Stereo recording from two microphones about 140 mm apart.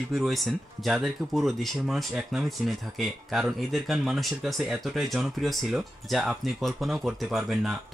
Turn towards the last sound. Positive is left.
turn(degrees=0)  # may be behind; listen again after turning